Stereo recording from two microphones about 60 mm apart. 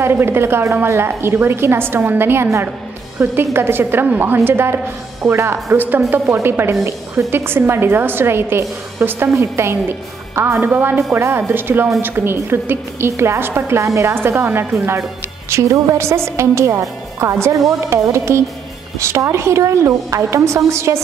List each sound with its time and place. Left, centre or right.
0.0 s a woman's voice: right
3.2 s a woman's voice: centre
3.5 s a woman's voice: right
5.8 s a woman's voice: right
6.2 s a woman's voice: right
7.2 s a woman's voice: right
13.7 s a woman's voice: right
14.1 s a woman's voice: right